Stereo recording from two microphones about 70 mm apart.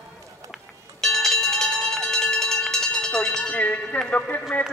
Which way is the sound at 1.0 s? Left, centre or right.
Centre.